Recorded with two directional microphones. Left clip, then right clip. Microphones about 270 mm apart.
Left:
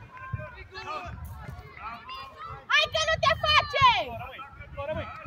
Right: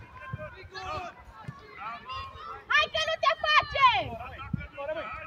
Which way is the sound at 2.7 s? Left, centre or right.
Left.